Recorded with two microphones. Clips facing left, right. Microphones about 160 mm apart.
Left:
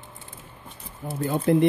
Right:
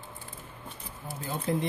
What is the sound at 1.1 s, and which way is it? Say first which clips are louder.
Speech: left 9 dB; 60° left (ahead or behind).